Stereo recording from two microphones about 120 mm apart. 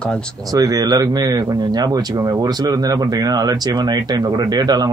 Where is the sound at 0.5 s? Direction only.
30° right (ahead or behind).